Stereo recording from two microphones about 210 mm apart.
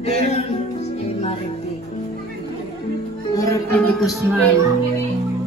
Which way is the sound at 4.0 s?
Centre (ahead or behind).